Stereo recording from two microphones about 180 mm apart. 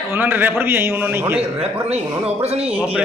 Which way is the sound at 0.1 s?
10° right (ahead or behind).